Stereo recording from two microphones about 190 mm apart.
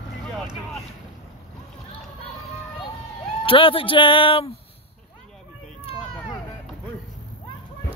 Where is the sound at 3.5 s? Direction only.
30° left (ahead or behind).